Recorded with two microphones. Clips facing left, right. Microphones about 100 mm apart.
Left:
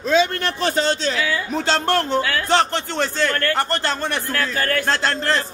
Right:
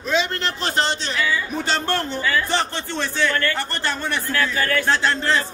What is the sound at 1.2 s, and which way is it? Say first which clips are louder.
A man's voice: left 2 dB; 90° left.